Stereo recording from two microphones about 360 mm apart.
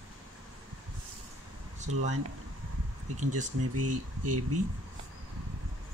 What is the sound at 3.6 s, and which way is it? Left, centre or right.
Speech, right.